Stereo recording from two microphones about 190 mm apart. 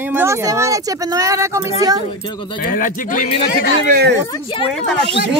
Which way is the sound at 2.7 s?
45° left (ahead or behind).